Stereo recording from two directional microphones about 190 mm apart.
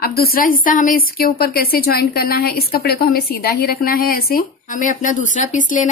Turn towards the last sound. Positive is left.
turn(degrees=40)  # may be behind; listen again after turning